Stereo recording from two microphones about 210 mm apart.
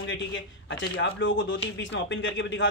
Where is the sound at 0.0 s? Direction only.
60° left (ahead or behind).